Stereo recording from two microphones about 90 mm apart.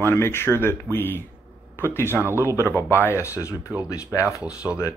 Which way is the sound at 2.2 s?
25° right (ahead or behind).